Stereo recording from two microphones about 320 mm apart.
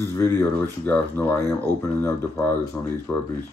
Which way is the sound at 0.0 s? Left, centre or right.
Centre.